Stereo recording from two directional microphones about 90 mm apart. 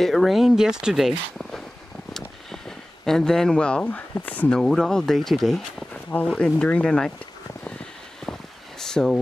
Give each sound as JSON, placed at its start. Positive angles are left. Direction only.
{"t": 0.0, "sound": "speech", "side_deg": 0}
{"t": 3.1, "sound": "speech", "side_deg": 5}
{"t": 4.6, "sound": "speech", "side_deg": 5}
{"t": 8.3, "sound": "a sound", "side_deg": 5}